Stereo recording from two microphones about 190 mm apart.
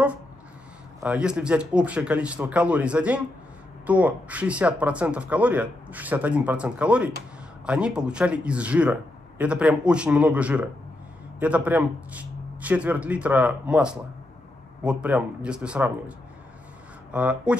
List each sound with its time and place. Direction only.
1.0 s speech: 5° right (ahead or behind)